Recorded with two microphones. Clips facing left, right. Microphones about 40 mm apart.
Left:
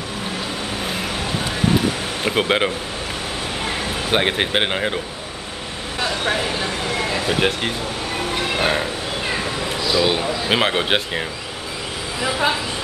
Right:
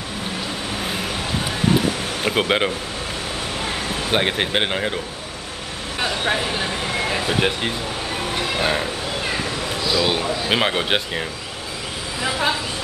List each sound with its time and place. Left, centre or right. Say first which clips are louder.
2.2 s speech: left 1 dB; centre
5.9 s speech: even; centre
6.5 s vehicle: left 1 dB; centre
7.3 s speech: left 1 dB; centre
8.3 s a sound: left 1 dB; centre
9.3 s speech: left 1 dB; centre